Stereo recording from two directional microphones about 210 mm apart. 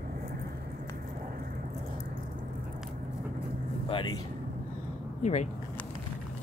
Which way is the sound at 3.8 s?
20° left (ahead or behind).